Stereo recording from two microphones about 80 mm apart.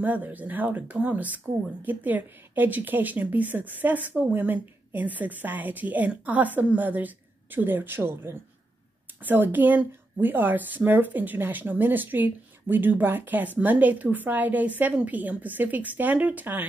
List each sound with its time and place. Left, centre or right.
0.0 s speech: right